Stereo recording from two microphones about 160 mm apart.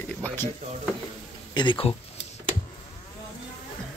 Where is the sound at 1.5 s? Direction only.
30° left (ahead or behind).